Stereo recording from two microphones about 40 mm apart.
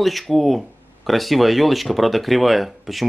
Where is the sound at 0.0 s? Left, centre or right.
Centre.